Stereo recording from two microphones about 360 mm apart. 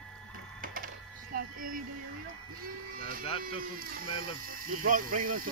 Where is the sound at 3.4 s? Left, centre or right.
Right.